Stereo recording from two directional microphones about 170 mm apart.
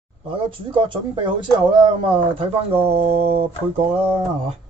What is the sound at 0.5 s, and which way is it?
Speech, 30° right (ahead or behind).